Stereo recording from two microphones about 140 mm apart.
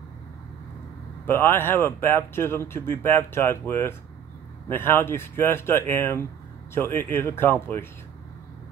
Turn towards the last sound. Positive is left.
turn(degrees=15)  # may be behind; listen again after turning